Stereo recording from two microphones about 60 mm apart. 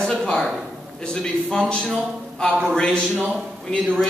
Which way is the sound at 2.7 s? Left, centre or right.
Centre.